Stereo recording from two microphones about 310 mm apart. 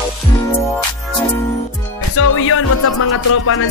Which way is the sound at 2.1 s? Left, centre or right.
Left.